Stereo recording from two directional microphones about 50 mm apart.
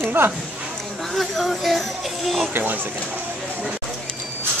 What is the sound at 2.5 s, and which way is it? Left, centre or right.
Speech, right.